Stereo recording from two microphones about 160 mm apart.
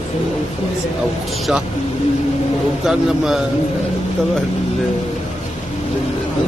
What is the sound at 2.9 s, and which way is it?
Speech, 5° right (ahead or behind).